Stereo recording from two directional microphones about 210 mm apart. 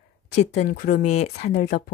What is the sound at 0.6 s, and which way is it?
Speech, 40° left (ahead or behind).